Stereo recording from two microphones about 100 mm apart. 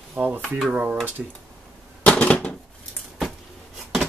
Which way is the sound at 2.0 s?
15° left (ahead or behind).